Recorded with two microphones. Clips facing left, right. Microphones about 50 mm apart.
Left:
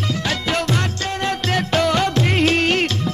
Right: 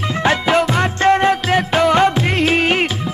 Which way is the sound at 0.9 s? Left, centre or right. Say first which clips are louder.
Right 10 dB; right.